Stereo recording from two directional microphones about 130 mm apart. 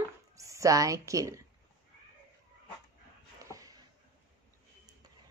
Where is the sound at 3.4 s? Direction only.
25° right (ahead or behind).